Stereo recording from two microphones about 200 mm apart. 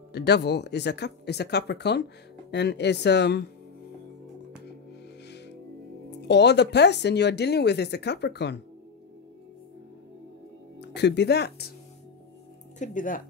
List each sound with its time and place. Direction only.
0.1 s speech: 55° left (ahead or behind)
6.2 s speech: 60° left (ahead or behind)
10.8 s speech: 60° left (ahead or behind)
12.7 s speech: 40° left (ahead or behind)